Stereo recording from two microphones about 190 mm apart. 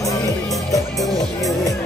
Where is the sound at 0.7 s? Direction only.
20° left (ahead or behind).